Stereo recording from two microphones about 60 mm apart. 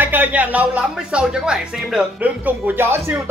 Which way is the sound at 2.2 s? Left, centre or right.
Right.